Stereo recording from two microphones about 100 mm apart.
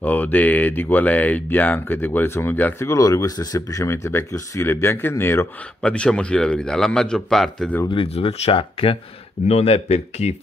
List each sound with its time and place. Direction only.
0.0 s speech: 15° left (ahead or behind)
2.9 s speech: 35° left (ahead or behind)
5.8 s a man's voice: 10° left (ahead or behind)
7.9 s speech: 65° left (ahead or behind)
9.5 s speech: 90° left